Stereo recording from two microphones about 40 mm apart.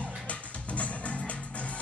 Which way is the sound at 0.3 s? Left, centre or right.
Left.